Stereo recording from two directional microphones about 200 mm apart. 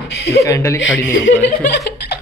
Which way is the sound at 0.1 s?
60° left (ahead or behind).